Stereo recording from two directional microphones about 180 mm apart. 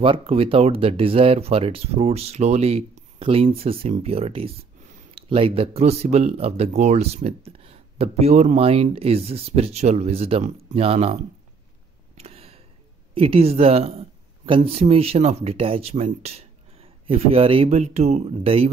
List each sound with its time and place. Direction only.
0.0 s speech: 30° right (ahead or behind)
12.2 s a sound: 35° right (ahead or behind)
13.1 s speech: 30° right (ahead or behind)